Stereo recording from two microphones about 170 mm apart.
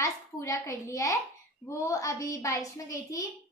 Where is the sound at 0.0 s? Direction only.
20° left (ahead or behind).